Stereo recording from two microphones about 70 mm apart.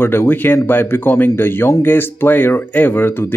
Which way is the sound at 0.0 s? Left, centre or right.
Left.